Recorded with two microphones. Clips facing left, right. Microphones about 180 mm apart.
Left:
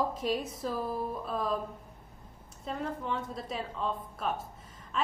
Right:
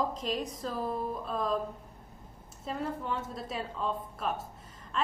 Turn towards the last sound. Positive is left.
turn(degrees=0)  # may be behind; listen again after turning